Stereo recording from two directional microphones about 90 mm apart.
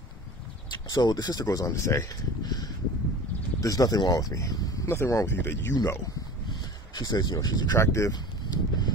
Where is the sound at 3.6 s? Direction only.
45° left (ahead or behind).